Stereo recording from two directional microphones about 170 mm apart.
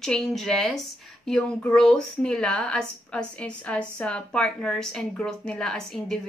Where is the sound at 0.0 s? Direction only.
5° left (ahead or behind).